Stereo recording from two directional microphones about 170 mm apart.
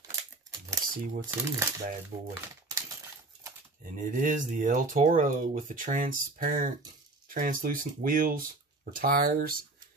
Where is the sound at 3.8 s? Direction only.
50° right (ahead or behind).